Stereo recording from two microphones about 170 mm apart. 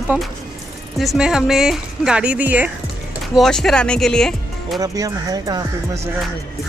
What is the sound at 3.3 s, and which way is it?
Speech, centre (ahead or behind).